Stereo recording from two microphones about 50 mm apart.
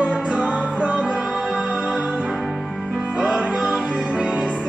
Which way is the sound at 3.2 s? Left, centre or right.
Right.